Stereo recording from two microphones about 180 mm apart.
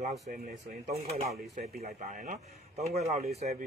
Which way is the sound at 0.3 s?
45° right (ahead or behind).